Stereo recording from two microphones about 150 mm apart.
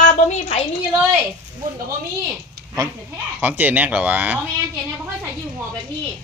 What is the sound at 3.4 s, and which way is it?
Speech, 10° right (ahead or behind).